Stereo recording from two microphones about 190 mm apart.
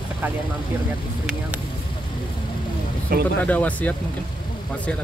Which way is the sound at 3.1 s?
50° right (ahead or behind).